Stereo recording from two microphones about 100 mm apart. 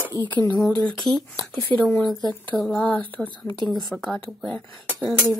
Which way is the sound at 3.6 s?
40° left (ahead or behind).